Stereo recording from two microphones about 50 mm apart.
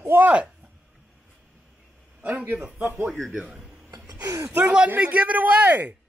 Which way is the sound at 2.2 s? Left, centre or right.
Right.